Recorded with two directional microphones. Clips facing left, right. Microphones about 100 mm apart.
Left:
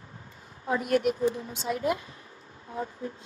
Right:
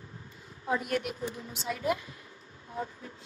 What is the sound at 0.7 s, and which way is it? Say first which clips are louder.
Speech: left 6 dB; 40° left (ahead or behind).